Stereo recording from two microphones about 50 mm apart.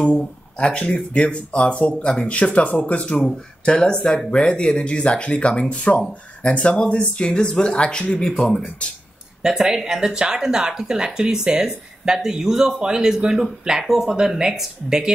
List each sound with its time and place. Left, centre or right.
0.0 s speech: centre
4.3 s speech: left
9.4 s speech: centre